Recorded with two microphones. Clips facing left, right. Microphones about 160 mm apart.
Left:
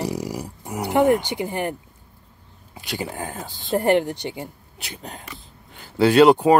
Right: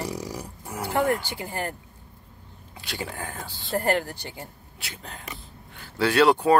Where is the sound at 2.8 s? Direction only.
15° left (ahead or behind).